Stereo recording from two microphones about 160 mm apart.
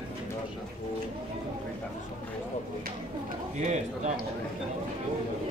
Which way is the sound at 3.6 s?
45° right (ahead or behind).